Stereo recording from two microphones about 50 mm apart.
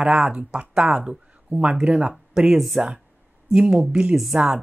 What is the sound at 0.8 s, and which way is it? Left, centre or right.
Speech, centre.